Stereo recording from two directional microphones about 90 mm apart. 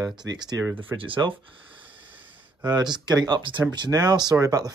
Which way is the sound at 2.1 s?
20° right (ahead or behind).